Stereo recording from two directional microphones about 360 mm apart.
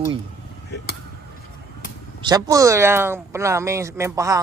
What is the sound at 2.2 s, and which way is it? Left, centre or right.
Speech, centre.